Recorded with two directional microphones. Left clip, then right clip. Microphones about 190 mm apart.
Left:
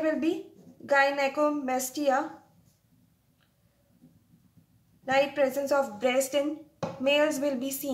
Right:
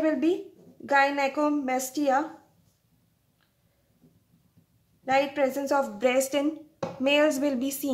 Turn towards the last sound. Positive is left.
turn(degrees=-45)  # may be behind; listen again after turning